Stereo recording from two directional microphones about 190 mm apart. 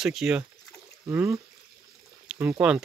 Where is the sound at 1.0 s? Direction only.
15° right (ahead or behind).